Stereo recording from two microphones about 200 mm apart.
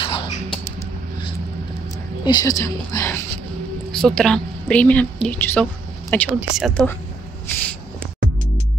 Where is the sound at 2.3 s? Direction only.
20° left (ahead or behind).